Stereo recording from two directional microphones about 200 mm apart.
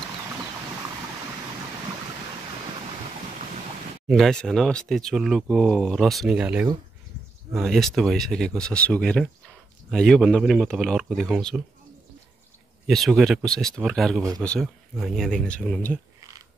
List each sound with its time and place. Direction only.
4.1 s speech: centre (ahead or behind)
12.8 s speech: centre (ahead or behind)